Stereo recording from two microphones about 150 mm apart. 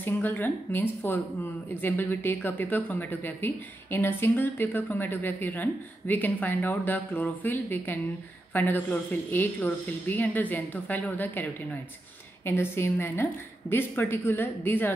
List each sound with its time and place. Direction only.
0.0 s speech: 15° left (ahead or behind)